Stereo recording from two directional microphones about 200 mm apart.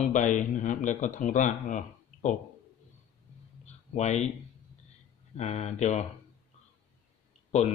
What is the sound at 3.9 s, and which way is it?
Speech, 35° left (ahead or behind).